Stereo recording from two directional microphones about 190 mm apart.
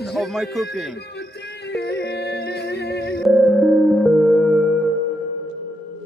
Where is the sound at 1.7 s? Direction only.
60° left (ahead or behind).